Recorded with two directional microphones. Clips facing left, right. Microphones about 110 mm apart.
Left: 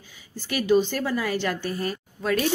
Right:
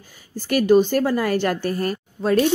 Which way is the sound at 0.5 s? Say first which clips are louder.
Right 6 dB; 50° right (ahead or behind).